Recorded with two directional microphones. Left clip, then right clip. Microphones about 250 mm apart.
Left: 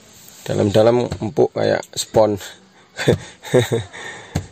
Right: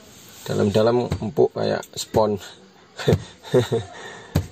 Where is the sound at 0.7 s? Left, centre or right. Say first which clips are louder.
Left 5 dB; left.